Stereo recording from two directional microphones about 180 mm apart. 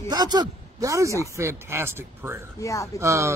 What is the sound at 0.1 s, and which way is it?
Speech, 25° right (ahead or behind).